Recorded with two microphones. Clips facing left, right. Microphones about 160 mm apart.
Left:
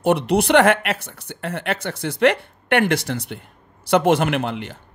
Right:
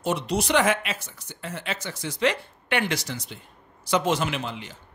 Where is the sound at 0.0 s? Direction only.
60° left (ahead or behind).